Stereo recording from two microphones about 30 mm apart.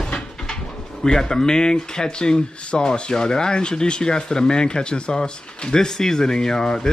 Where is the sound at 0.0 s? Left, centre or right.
Left.